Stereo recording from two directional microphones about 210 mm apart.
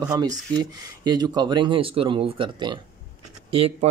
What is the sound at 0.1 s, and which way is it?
Speech, 20° right (ahead or behind).